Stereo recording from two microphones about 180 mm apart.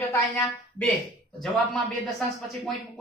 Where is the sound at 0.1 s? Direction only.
10° left (ahead or behind).